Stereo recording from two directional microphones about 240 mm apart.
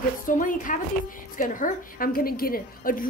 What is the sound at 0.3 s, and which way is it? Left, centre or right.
A woman's voice, left.